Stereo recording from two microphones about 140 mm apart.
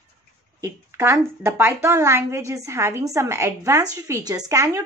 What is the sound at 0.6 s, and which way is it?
A woman's voice, 20° right (ahead or behind).